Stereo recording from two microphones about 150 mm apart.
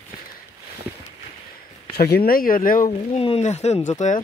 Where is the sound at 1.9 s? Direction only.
90° left; by 2.9 s 65° left (ahead or behind).